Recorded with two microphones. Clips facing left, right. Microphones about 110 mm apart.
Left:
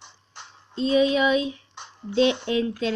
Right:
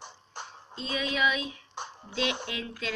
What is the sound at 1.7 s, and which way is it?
Music, 45° right (ahead or behind).